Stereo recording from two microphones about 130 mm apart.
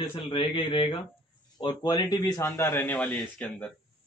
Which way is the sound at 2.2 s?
20° left (ahead or behind).